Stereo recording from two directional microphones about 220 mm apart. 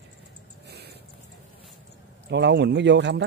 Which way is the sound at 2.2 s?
50° right (ahead or behind).